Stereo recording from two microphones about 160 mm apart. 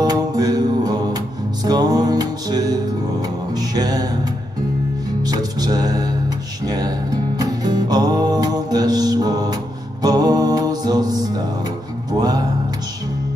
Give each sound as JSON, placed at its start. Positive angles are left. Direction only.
{"t": 0.0, "sound": "music", "side_deg": -25}
{"t": 5.2, "sound": "music", "side_deg": -25}